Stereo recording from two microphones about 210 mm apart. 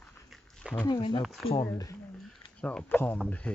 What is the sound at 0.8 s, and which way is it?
Speech, 20° left (ahead or behind).